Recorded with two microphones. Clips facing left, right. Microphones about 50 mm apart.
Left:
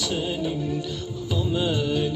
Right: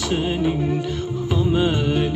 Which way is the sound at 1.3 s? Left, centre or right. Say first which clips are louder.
Right 5 dB; right.